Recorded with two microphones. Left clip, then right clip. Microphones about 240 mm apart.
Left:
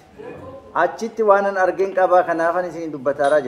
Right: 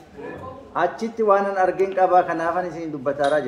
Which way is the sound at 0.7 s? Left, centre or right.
Left.